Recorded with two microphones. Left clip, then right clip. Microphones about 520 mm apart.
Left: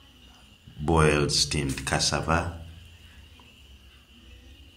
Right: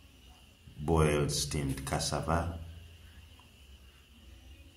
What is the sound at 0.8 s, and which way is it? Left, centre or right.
Speech, right.